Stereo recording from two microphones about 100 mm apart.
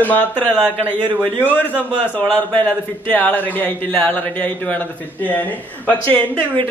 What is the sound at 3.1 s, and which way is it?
Speech, 15° left (ahead or behind).